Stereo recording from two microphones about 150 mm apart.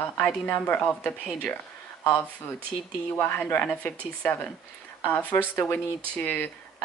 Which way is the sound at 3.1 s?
10° left (ahead or behind).